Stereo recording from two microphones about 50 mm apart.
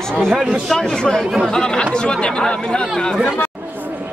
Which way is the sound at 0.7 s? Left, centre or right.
Centre.